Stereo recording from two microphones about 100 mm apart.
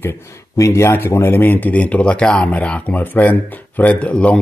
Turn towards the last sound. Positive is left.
turn(degrees=10)  # may be behind; listen again after turning